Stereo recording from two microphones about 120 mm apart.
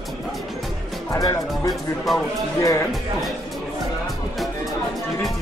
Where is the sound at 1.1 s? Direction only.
30° left (ahead or behind).